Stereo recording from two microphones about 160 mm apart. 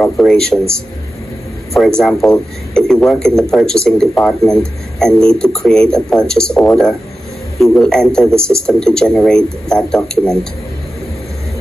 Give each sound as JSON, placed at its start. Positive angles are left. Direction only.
{"t": 0.0, "sound": "a man's voice", "side_deg": 5}